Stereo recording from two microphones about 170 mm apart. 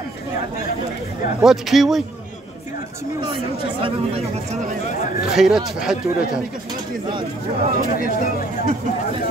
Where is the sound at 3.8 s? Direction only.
35° right (ahead or behind).